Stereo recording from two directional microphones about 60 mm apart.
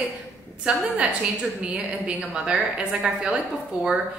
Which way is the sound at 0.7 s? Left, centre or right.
Centre.